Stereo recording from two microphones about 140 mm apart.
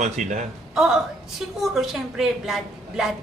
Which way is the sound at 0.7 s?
5° right (ahead or behind).